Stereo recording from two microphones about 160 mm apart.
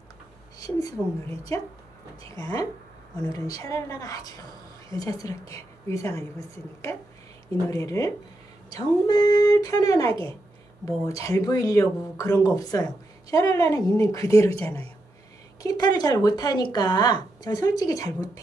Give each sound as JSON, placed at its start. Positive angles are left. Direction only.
{"t": 0.6, "sound": "speech", "side_deg": 20}
{"t": 7.6, "sound": "speech", "side_deg": 20}